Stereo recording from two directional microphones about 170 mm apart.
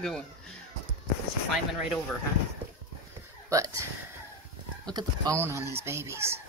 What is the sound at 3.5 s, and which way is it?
Speech, 20° right (ahead or behind).